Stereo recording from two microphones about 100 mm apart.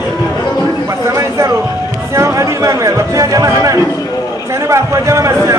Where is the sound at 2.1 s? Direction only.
30° right (ahead or behind).